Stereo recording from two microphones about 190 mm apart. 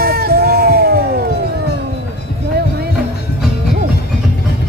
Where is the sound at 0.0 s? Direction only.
55° right (ahead or behind).